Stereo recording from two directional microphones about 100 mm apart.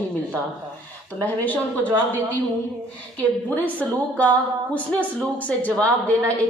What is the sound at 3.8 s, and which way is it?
Speech, 10° left (ahead or behind).